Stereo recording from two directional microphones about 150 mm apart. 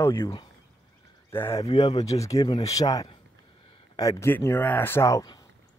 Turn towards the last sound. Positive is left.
turn(degrees=20)  # may be behind; listen again after turning